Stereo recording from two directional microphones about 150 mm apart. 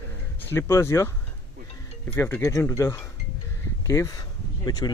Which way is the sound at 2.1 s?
15° left (ahead or behind).